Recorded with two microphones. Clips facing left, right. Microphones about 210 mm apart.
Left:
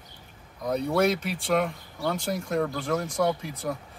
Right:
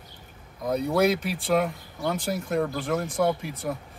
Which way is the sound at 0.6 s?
5° right (ahead or behind).